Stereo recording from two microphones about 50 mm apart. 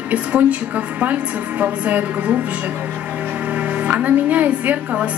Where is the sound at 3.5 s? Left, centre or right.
Right.